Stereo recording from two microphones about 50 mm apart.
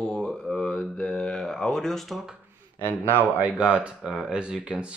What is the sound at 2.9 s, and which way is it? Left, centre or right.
Speech, right.